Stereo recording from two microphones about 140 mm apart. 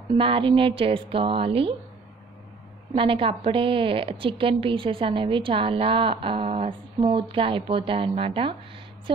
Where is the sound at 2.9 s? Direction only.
40° right (ahead or behind).